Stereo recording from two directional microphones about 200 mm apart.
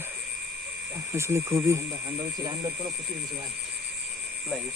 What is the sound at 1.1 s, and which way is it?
Speech, 15° right (ahead or behind).